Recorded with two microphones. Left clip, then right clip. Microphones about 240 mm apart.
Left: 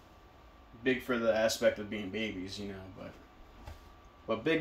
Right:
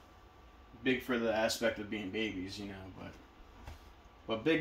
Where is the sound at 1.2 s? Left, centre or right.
Left.